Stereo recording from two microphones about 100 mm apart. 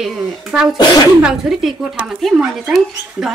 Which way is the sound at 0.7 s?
45° left (ahead or behind).